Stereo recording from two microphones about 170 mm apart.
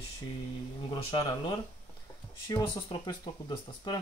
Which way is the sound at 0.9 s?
30° left (ahead or behind).